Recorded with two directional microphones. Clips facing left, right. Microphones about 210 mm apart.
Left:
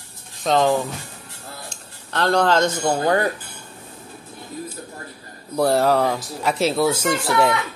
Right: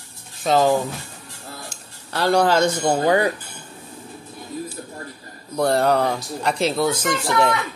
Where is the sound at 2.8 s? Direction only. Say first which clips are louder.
Right 1 dB; 15° right (ahead or behind).